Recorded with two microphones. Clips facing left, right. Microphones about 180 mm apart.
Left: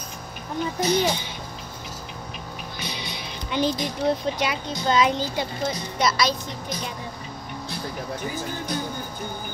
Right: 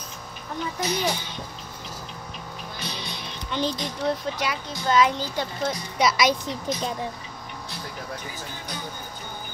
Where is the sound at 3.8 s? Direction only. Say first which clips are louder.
Left 3 dB; 15° left (ahead or behind).